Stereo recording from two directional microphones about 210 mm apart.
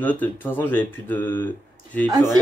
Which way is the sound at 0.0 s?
10° left (ahead or behind).